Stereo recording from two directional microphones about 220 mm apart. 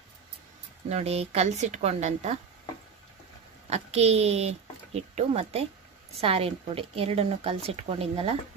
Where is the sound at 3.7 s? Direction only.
30° right (ahead or behind).